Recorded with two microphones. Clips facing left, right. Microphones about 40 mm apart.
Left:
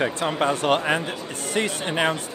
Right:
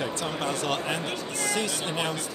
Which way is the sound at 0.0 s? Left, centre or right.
Left.